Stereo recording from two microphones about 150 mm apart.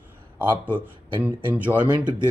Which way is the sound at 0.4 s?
10° right (ahead or behind).